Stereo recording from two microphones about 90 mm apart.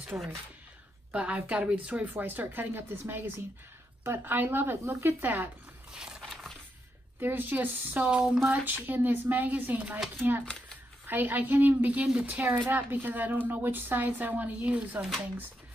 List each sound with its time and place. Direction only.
0.1 s speech: 20° right (ahead or behind)
5.9 s a sound: 10° right (ahead or behind)
7.2 s speech: 20° right (ahead or behind)
11.1 s speech: 20° right (ahead or behind)